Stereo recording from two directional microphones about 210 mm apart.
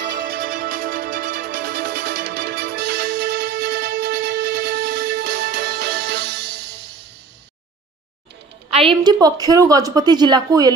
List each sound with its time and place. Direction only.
0.2 s music: 40° right (ahead or behind)
8.6 s a woman's voice: 25° right (ahead or behind)